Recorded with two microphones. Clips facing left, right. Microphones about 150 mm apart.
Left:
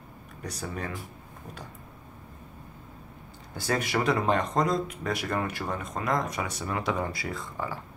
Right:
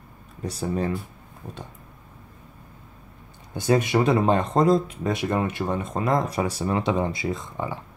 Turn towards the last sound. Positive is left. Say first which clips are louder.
# right 4 dB
turn(degrees=-20)  # may be behind; listen again after turning